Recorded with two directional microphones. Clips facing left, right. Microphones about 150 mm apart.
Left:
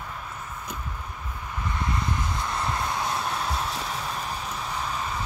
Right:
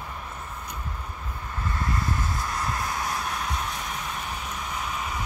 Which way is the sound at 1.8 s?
20° left (ahead or behind).